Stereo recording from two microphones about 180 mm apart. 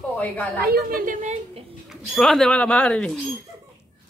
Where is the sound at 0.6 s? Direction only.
55° right (ahead or behind).